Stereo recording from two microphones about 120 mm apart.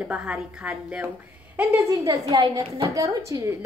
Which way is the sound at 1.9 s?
30° right (ahead or behind).